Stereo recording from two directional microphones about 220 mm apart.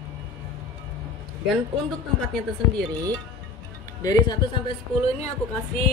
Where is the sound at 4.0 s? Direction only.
15° left (ahead or behind).